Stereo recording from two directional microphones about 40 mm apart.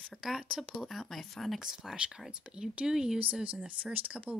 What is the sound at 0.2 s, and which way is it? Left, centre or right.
Speech, centre.